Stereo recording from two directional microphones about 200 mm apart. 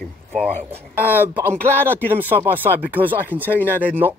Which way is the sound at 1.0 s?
10° right (ahead or behind).